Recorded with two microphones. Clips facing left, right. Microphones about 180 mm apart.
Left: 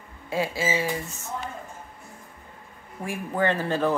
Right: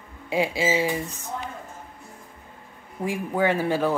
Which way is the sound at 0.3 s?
15° right (ahead or behind).